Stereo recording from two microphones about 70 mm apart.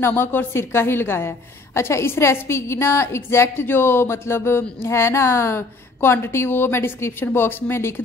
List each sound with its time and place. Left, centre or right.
0.0 s a woman's voice: left